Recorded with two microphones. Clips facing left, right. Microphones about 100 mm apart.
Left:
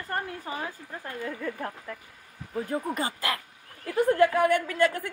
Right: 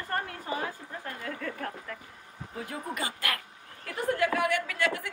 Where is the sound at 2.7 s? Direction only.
35° left (ahead or behind).